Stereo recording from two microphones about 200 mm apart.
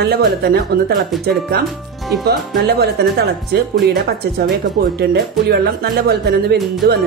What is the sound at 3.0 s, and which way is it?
Speech, 55° right (ahead or behind).